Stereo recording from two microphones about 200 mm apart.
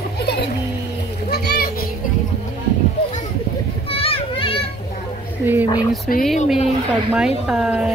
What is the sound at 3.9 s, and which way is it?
Children playing, 30° left (ahead or behind).